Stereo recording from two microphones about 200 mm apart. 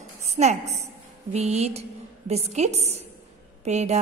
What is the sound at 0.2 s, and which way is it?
A woman's voice, 35° right (ahead or behind).